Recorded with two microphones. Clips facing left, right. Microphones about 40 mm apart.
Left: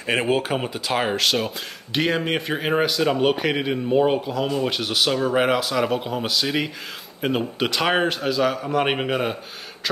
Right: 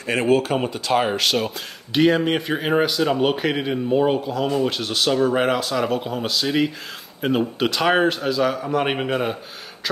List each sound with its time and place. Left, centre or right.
0.0 s speech: centre